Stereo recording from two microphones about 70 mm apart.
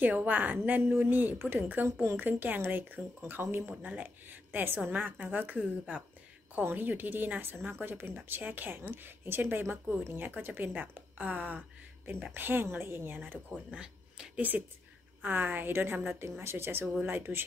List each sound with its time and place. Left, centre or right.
0.0 s a woman's voice: right
1.9 s a woman's voice: right
2.1 s a woman's voice: right
13.7 s a sound: centre
15.2 s a woman's voice: right